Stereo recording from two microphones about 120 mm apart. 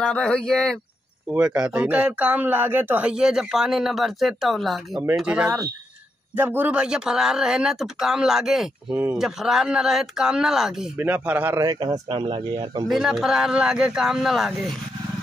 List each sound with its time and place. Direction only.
0.0 s speech: 5° left (ahead or behind)
1.3 s speech: 10° right (ahead or behind)
8.9 s speech: 20° right (ahead or behind)
9.2 s speech: 5° right (ahead or behind)
11.0 s speech: 15° right (ahead or behind)
11.6 s speech: 30° right (ahead or behind)
12.8 s speech: 5° right (ahead or behind)